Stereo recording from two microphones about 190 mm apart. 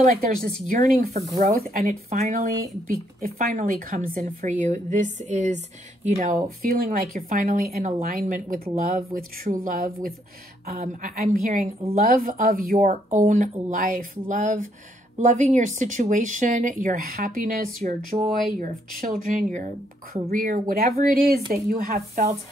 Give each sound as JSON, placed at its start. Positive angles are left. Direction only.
{"t": 0.7, "sound": "a woman's voice", "side_deg": -45}